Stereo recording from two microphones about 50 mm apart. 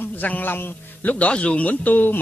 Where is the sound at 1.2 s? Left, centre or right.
Left.